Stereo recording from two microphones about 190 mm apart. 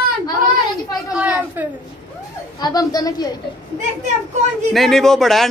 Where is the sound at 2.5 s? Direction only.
20° left (ahead or behind).